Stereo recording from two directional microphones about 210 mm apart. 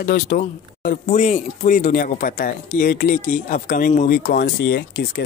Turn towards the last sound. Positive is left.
turn(degrees=50)  # may be behind; listen again after turning